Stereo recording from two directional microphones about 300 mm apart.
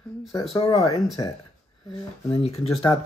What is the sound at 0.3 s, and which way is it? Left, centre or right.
Speech, centre.